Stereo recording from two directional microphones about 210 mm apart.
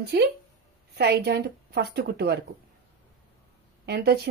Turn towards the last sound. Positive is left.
turn(degrees=-50)  # may be behind; listen again after turning